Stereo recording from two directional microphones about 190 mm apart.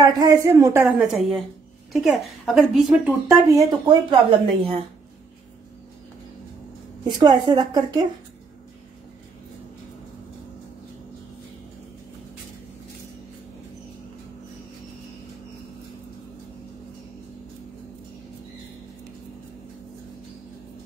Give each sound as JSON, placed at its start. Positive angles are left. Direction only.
{"t": 0.0, "sound": "a woman's voice", "side_deg": -20}
{"t": 3.3, "sound": "speech", "side_deg": -15}
{"t": 7.1, "sound": "speech", "side_deg": -20}